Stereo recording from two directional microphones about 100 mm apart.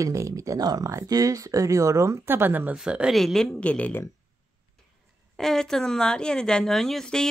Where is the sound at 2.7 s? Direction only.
10° right (ahead or behind).